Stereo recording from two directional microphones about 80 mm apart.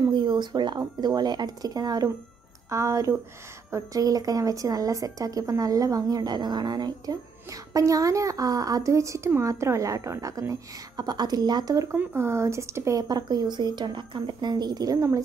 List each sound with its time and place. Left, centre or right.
0.0 s speech: right
2.7 s speech: right
7.4 s speech: right
10.5 s speech: right
11.9 s speech: right
13.1 s speech: right